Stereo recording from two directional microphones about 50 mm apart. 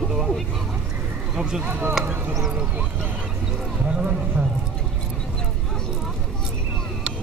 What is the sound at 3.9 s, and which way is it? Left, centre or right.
Speech, right.